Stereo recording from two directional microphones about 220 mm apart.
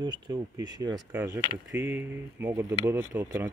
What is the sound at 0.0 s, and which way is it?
Speech, 20° right (ahead or behind).